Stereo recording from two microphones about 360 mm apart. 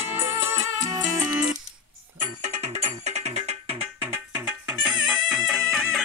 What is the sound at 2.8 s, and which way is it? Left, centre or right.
Music, centre.